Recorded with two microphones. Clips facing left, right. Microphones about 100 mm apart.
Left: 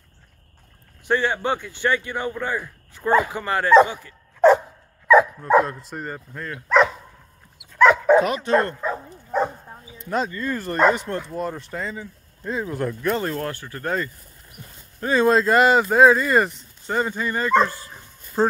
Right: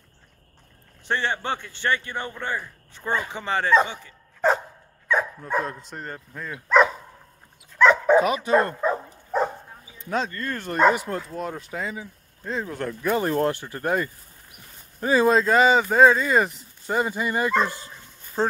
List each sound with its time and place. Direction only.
1.0 s speech: 10° left (ahead or behind)
5.7 s speech: centre (ahead or behind)
7.7 s dog: 5° left (ahead or behind)
10.0 s speech: 5° left (ahead or behind)
13.1 s speech: 20° right (ahead or behind)
18.4 s speech: 5° left (ahead or behind)